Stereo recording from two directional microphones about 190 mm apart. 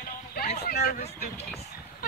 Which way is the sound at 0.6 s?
55° left (ahead or behind).